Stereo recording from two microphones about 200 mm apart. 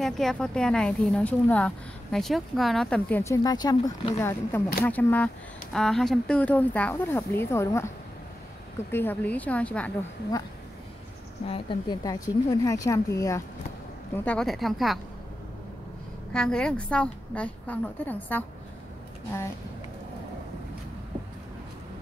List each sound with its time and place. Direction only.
0.0 s a woman's voice: centre (ahead or behind)
8.9 s speech: 10° left (ahead or behind)
11.4 s speech: 30° left (ahead or behind)
12.0 s a woman's voice: 15° left (ahead or behind); by 15.0 s centre (ahead or behind)
16.3 s a woman's voice: 5° left (ahead or behind)